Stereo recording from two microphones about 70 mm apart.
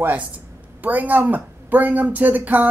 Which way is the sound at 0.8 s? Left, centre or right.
Right.